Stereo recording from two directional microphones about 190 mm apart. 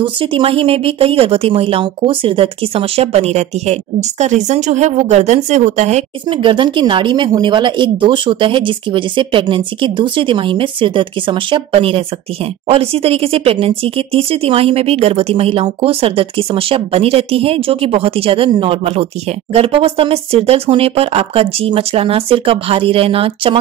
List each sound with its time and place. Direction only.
0.0 s a woman's voice: 25° right (ahead or behind)